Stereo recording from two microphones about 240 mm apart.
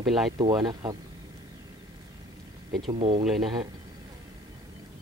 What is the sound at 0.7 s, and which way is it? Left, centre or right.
Speech, centre.